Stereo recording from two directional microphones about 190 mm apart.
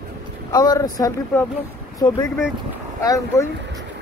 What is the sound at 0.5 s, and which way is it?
Speech, 20° left (ahead or behind).